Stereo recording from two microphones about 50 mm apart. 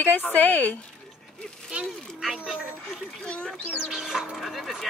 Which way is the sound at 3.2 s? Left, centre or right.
Left.